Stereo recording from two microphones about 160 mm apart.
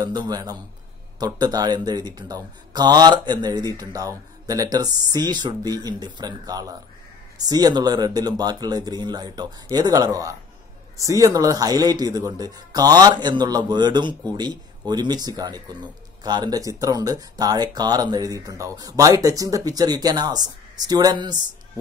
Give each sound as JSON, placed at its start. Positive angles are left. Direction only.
{"t": 0.0, "sound": "speech", "side_deg": -25}